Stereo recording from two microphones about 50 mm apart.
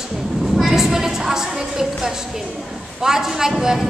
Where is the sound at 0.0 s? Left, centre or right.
Centre.